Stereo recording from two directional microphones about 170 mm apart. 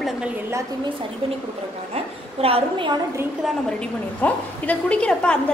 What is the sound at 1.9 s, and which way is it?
A woman's voice, 35° right (ahead or behind).